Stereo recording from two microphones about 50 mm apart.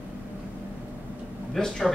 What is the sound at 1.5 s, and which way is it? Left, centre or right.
Speech, centre.